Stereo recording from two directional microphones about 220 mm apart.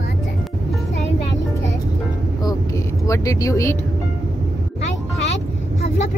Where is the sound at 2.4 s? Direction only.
15° left (ahead or behind).